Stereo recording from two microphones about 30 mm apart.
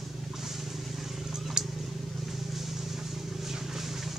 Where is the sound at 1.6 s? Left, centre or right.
Right.